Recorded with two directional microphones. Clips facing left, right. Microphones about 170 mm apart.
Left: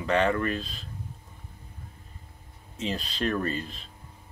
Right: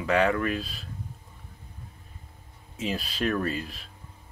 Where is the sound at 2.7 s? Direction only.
5° right (ahead or behind).